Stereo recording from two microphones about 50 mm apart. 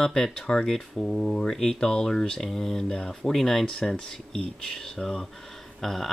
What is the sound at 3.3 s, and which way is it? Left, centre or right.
Speech, centre.